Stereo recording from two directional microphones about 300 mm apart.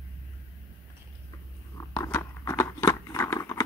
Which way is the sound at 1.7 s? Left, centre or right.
Centre.